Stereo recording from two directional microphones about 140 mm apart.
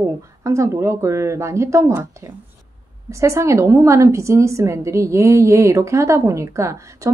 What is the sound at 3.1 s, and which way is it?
A woman's voice, 20° right (ahead or behind).